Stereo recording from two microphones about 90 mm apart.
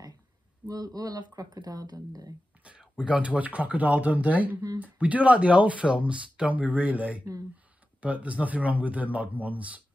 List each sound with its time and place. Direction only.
0.7 s speech: 45° right (ahead or behind)
2.6 s speech: 10° right (ahead or behind)